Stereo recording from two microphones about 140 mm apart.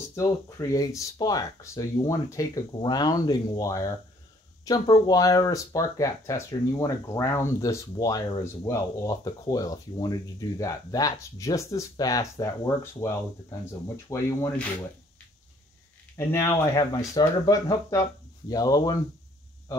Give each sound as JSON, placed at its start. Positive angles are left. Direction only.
{"t": 0.1, "sound": "speech", "side_deg": 25}
{"t": 16.2, "sound": "speech", "side_deg": 20}